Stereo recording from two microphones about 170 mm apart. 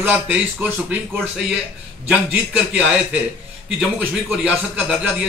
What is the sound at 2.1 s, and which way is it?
A man's voice, 5° right (ahead or behind).